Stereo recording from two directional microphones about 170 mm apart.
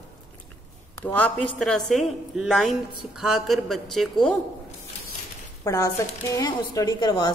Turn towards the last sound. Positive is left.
turn(degrees=25)  # may be behind; listen again after turning